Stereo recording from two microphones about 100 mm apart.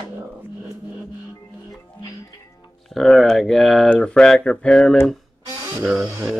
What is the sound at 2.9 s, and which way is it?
Speech, centre (ahead or behind).